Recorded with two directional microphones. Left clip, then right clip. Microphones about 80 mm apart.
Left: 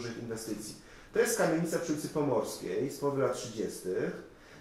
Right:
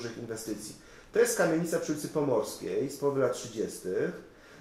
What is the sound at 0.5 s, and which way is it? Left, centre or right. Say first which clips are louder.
Speech: right 1 dB; right.